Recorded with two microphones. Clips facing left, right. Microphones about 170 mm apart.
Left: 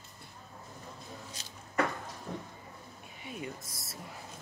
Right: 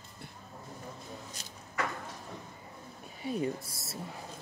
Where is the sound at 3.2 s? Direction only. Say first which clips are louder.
Right 9 dB; 35° right (ahead or behind).